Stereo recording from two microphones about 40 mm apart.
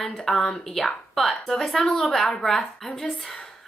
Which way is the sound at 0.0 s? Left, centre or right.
Centre.